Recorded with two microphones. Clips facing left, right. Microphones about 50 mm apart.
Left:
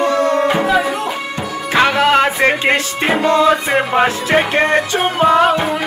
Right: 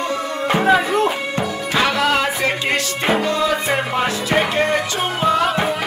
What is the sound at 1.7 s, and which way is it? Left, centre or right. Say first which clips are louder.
Music: left 6 dB; left.